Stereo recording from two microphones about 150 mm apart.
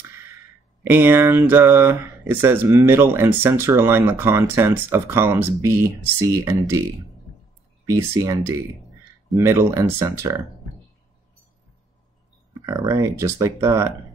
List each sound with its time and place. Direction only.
0.1 s a sound: 15° right (ahead or behind)
0.8 s speech: 15° right (ahead or behind)
7.8 s speech: 20° right (ahead or behind)
12.6 s speech: 25° right (ahead or behind)